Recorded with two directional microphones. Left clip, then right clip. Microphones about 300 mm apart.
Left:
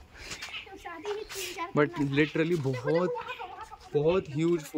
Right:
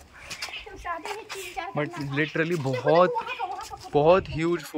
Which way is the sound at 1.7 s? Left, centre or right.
Centre.